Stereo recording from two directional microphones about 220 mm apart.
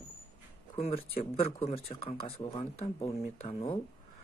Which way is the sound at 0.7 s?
25° left (ahead or behind).